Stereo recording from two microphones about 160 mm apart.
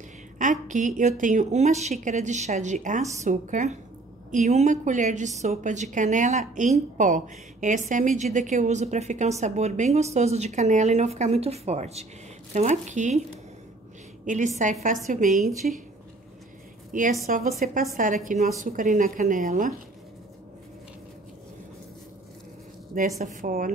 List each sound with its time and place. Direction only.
0.4 s a woman's voice: 50° right (ahead or behind)
14.2 s a woman's voice: 50° right (ahead or behind)
16.9 s a woman's voice: 55° right (ahead or behind)
22.9 s a woman's voice: 55° right (ahead or behind)